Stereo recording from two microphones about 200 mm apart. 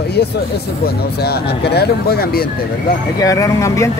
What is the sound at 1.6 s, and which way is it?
Speech, 55° left (ahead or behind).